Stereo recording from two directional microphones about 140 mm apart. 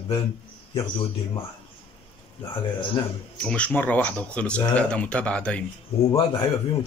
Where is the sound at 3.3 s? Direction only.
5° left (ahead or behind).